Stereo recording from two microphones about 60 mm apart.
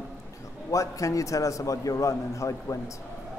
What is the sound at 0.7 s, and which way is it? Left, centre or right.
A man's voice, left.